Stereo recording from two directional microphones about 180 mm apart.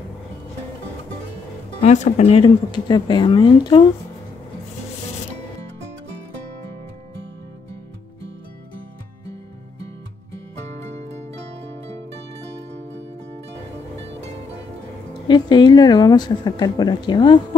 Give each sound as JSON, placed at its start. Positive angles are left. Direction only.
{"t": 1.8, "sound": "speech", "side_deg": 40}
{"t": 15.2, "sound": "speech", "side_deg": 25}